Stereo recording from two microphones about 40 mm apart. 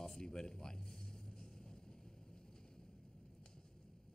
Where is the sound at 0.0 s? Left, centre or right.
Centre.